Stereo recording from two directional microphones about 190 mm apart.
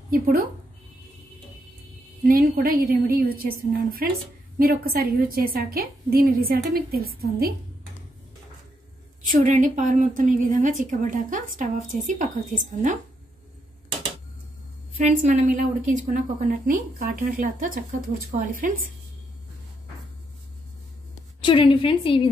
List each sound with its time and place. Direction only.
0.1 s a woman's voice: 50° right (ahead or behind)
2.2 s a woman's voice: 45° right (ahead or behind)
9.3 s a woman's voice: 40° right (ahead or behind)
15.0 s a woman's voice: 40° right (ahead or behind)
21.4 s a woman's voice: 25° left (ahead or behind)